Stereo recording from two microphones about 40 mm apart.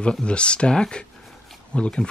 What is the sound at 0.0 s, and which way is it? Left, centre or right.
Speech, left.